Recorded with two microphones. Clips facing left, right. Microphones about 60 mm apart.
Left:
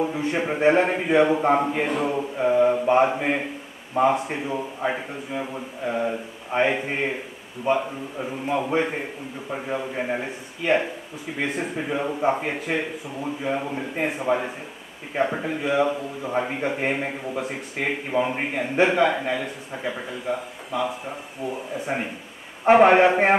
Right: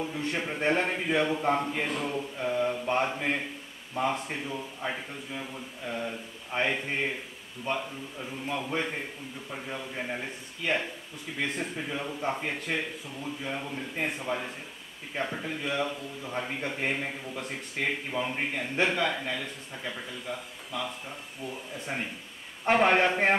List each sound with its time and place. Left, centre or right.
0.1 s a man's voice: centre
17.4 s a man's voice: centre